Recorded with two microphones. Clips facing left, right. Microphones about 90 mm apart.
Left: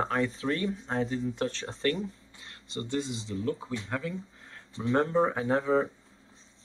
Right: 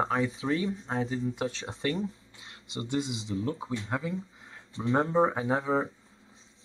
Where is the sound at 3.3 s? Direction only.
20° right (ahead or behind).